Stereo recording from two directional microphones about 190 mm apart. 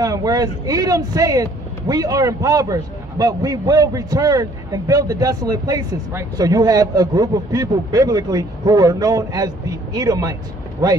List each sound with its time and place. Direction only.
0.0 s speech: 20° right (ahead or behind)